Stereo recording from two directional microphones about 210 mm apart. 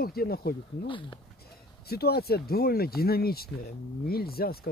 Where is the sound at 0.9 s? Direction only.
25° left (ahead or behind).